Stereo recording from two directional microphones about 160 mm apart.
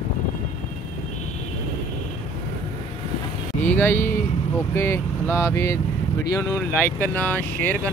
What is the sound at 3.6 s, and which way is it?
Vehicle, 10° left (ahead or behind).